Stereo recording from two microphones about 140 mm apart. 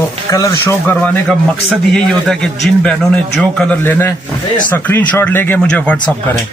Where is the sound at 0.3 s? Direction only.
20° left (ahead or behind).